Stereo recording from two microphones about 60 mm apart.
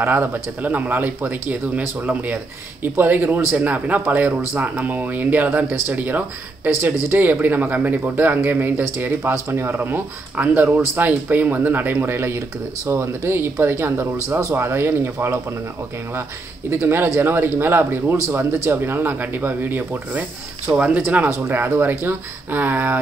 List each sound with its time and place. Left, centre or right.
0.0 s speech: right
16.7 s speech: right
21.4 s speech: right